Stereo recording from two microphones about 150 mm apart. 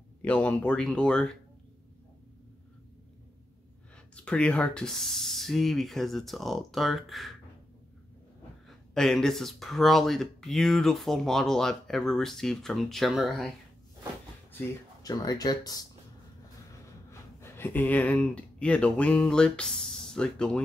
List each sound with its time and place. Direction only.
0.2 s speech: 10° left (ahead or behind)
4.1 s speech: 10° left (ahead or behind)
8.6 s speech: centre (ahead or behind)
15.0 s speech: 25° left (ahead or behind)
17.1 s speech: 15° left (ahead or behind)